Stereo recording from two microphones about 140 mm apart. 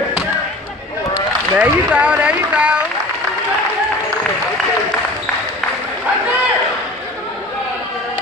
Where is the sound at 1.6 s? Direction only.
10° right (ahead or behind).